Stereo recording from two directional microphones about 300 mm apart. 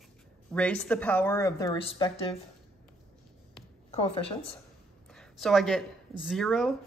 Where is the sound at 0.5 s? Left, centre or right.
Centre.